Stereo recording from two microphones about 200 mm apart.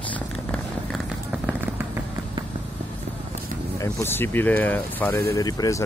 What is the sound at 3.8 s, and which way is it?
Speech, 10° left (ahead or behind).